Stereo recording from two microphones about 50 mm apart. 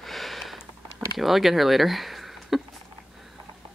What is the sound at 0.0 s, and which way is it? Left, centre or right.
Sniff, centre.